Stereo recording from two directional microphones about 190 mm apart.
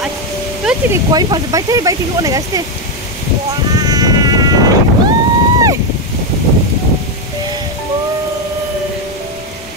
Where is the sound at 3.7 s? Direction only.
20° right (ahead or behind).